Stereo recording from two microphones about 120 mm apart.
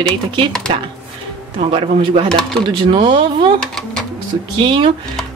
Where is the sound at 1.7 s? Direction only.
50° right (ahead or behind).